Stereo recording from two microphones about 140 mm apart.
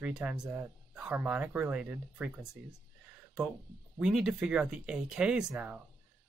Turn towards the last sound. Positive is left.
turn(degrees=-15)  # may be behind; listen again after turning